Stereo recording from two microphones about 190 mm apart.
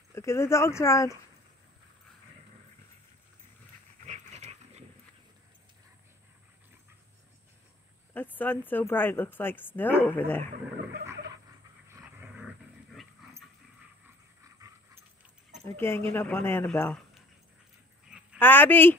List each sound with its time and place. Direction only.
0.1 s speech: 15° left (ahead or behind)
4.0 s dog: 40° right (ahead or behind)
8.1 s speech: 10° left (ahead or behind)
11.9 s dog: 10° right (ahead or behind)
14.0 s dog: 15° right (ahead or behind)
15.6 s speech: 10° left (ahead or behind)
18.4 s speech: 10° left (ahead or behind)